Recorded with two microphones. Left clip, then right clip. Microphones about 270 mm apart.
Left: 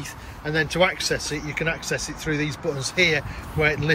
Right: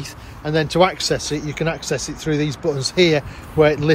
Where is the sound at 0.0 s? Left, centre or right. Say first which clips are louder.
Right 3 dB; centre.